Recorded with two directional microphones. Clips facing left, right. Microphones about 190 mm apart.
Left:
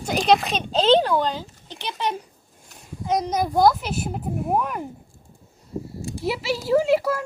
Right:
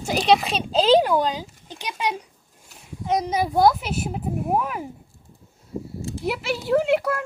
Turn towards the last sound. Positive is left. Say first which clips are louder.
# left 1 dB
turn(degrees=0)  # may be behind; listen again after turning